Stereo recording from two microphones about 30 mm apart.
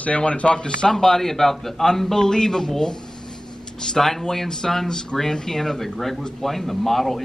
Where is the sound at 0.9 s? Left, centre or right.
Centre.